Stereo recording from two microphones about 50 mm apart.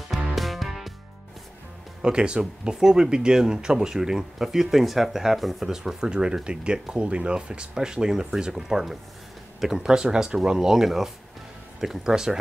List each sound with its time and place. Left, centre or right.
0.3 s music: centre
2.0 s speech: centre